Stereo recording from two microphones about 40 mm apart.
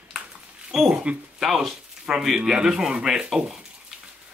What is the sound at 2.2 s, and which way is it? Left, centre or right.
Speech, centre.